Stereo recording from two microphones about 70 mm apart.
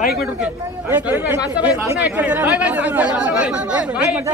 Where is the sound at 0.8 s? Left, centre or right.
Right.